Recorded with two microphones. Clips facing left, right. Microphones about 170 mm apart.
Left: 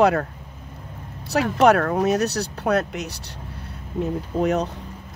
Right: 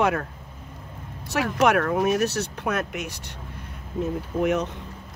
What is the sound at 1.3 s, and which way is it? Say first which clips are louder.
Speech: left 4 dB; 35° left (ahead or behind).